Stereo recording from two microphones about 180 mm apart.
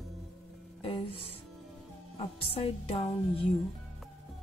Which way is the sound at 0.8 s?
30° left (ahead or behind).